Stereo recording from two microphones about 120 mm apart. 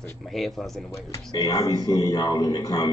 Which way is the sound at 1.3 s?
30° left (ahead or behind).